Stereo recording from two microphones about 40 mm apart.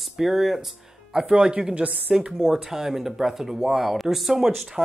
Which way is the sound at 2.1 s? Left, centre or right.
Centre.